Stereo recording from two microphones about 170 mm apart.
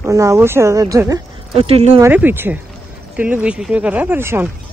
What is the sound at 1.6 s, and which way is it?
Speech, 35° right (ahead or behind).